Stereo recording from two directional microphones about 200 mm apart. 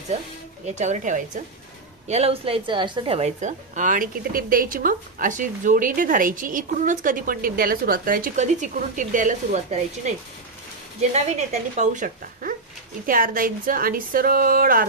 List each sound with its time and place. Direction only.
0.7 s a woman's voice: 35° right (ahead or behind)